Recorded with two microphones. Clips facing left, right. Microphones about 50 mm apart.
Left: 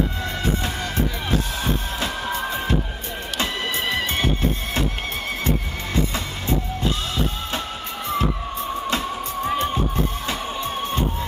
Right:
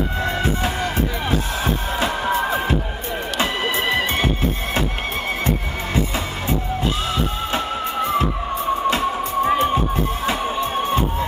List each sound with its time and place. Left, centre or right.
2.0 s music: centre
7.5 s music: centre